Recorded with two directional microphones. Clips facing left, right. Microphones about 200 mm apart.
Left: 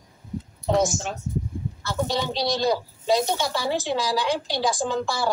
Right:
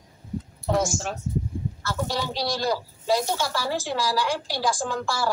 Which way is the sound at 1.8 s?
20° left (ahead or behind).